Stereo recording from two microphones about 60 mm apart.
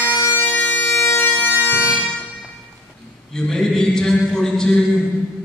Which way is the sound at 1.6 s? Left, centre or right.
Left.